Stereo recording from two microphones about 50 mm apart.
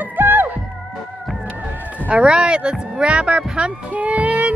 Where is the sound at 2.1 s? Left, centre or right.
Right.